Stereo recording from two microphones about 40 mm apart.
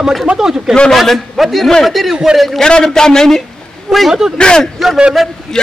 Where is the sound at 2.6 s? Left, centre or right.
Centre.